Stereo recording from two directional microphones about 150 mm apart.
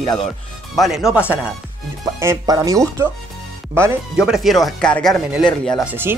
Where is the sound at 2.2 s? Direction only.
20° right (ahead or behind).